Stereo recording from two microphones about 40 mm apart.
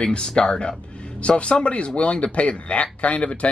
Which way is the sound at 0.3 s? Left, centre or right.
Centre.